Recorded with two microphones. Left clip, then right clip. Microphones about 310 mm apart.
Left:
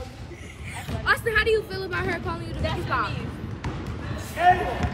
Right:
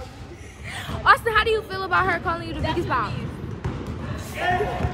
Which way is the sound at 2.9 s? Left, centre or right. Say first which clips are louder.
Even; right.